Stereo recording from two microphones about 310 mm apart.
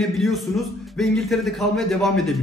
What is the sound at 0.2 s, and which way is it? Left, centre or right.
A man's voice, centre.